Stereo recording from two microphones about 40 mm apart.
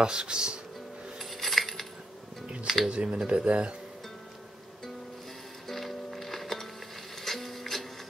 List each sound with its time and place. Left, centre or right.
0.0 s speech: centre
1.3 s coin: centre
2.6 s speech: centre
2.9 s speech: right
5.7 s music: centre
7.2 s printer: centre